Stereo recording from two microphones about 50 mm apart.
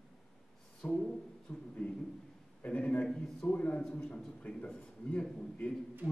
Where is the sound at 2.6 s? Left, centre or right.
Left.